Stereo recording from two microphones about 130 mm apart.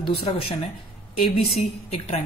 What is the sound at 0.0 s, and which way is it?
Speech, 45° left (ahead or behind).